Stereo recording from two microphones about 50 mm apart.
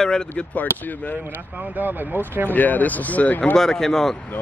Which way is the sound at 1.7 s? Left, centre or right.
Right.